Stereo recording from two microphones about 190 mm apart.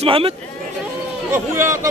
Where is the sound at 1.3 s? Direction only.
15° right (ahead or behind).